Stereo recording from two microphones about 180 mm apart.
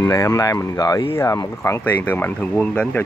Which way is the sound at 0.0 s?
15° left (ahead or behind).